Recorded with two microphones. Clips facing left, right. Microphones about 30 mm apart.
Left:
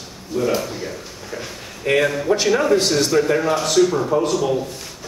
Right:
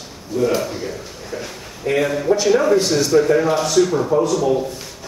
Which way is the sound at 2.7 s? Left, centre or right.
Left.